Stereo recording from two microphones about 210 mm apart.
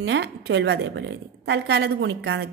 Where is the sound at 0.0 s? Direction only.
55° right (ahead or behind).